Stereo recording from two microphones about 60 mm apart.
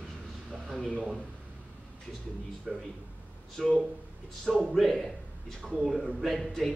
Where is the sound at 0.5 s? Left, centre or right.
Centre.